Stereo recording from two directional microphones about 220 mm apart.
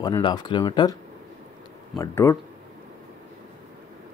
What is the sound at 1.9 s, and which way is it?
Speech, 10° left (ahead or behind).